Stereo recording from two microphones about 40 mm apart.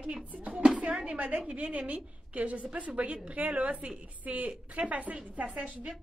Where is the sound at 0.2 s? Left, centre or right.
Right.